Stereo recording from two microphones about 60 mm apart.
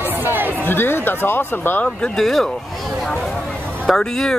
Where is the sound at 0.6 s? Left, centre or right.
Left.